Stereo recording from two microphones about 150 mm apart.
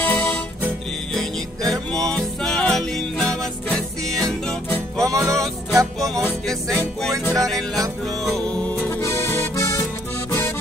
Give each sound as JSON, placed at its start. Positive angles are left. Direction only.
{"t": 0.0, "sound": "music", "side_deg": 10}
{"t": 1.9, "sound": "music", "side_deg": 5}
{"t": 5.0, "sound": "music", "side_deg": -20}
{"t": 6.1, "sound": "music", "side_deg": 5}